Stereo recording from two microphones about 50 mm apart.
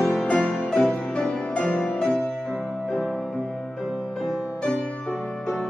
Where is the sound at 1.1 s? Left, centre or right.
Centre.